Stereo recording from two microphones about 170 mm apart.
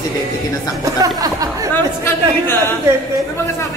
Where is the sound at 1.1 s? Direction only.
20° right (ahead or behind).